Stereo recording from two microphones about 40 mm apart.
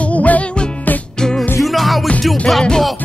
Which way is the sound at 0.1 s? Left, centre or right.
Left.